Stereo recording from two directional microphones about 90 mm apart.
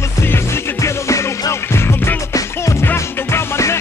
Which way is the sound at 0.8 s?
35° left (ahead or behind).